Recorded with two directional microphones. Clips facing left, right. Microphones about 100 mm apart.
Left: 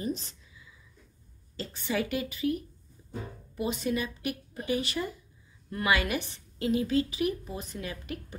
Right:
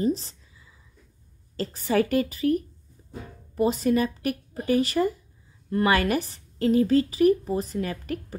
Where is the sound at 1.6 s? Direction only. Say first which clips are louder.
Right 8 dB; 40° right (ahead or behind).